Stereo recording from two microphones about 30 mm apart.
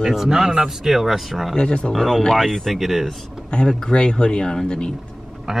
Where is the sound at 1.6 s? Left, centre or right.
Left.